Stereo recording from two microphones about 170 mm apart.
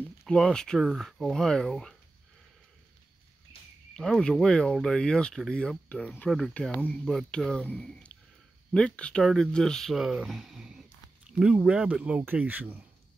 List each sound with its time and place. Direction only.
0.2 s speech: 5° left (ahead or behind)
3.9 s a man's voice: 5° left (ahead or behind)